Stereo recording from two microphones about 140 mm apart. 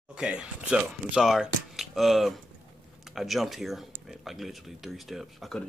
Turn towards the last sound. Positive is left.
turn(degrees=0)  # may be behind; listen again after turning